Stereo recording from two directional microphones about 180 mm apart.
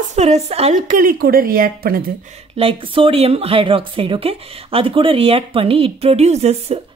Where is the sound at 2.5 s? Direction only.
30° right (ahead or behind).